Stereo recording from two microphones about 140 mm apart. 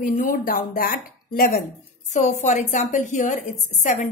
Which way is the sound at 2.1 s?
55° left (ahead or behind).